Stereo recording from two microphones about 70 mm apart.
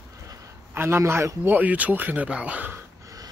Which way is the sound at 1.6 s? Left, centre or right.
Right.